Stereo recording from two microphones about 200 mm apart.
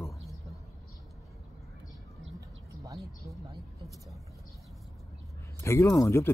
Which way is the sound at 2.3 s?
15° right (ahead or behind).